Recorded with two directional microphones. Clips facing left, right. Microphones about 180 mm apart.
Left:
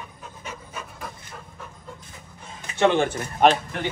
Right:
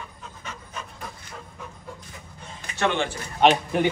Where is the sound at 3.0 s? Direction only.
55° left (ahead or behind).